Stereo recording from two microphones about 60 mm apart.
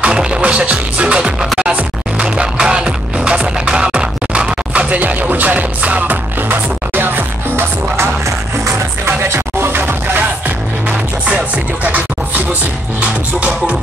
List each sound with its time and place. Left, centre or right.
0.0 s music: centre; by 10.2 s right
10.9 s music: right